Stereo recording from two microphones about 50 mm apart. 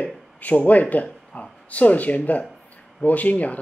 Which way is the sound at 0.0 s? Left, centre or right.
Left.